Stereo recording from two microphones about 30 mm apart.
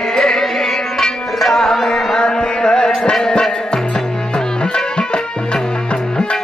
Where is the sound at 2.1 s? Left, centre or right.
Left.